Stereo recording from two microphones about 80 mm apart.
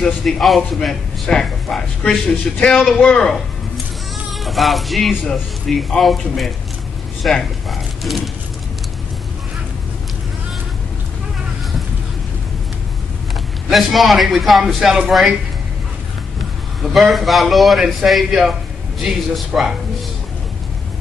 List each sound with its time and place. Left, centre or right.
0.0 s a man's voice: centre
4.3 s a sound: centre
5.8 s a man's voice: centre
13.7 s a man's voice: centre
16.9 s a man's voice: centre